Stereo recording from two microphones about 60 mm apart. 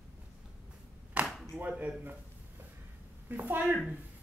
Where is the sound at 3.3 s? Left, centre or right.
Right.